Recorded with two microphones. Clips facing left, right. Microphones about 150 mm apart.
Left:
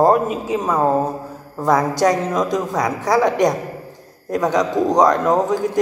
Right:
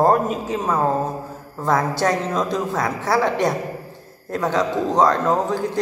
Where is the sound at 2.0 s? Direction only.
15° left (ahead or behind).